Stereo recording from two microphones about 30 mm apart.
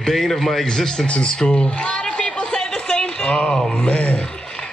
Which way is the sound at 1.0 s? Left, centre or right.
Left.